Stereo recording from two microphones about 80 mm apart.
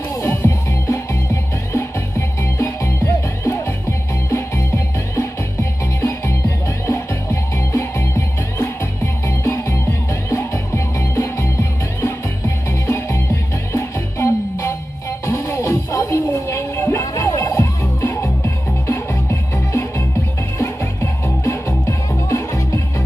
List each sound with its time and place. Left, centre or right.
0.1 s music: left
12.8 s music: left